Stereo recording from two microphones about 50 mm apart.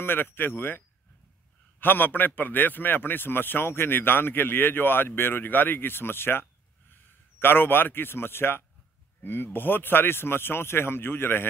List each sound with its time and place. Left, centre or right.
0.0 s a man's voice: left